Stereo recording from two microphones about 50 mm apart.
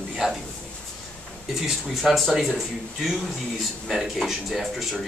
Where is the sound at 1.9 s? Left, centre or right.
Centre.